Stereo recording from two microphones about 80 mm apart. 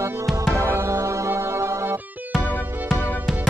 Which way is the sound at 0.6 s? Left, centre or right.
Right.